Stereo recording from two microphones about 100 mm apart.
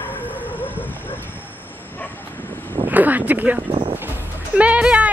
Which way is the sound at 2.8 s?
15° right (ahead or behind).